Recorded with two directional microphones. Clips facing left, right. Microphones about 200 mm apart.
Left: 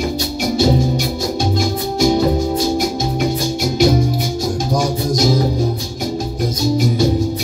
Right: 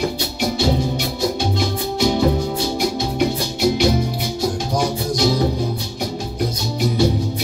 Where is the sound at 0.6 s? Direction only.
45° left (ahead or behind).